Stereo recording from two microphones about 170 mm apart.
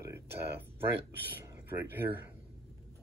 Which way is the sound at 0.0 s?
15° right (ahead or behind).